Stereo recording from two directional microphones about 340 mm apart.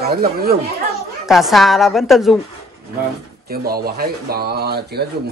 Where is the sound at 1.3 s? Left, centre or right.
Centre.